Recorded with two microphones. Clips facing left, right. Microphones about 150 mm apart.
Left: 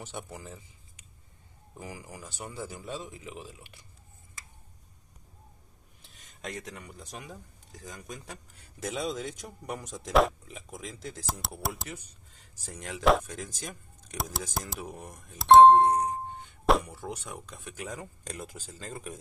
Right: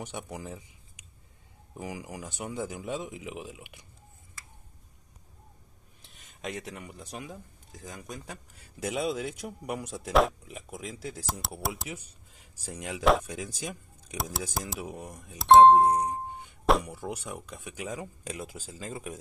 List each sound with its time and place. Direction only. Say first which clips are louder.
0.0 s speech: right 3 dB; 15° right (ahead or behind)
6.0 s speech: right 3 dB; centre (ahead or behind)
16.6 s a sound: even; centre (ahead or behind)
16.9 s speech: right 2 dB; 10° right (ahead or behind)